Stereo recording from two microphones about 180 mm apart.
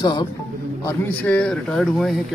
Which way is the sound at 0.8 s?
10° left (ahead or behind).